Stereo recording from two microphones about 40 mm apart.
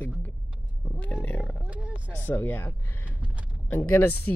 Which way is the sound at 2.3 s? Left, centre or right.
Left.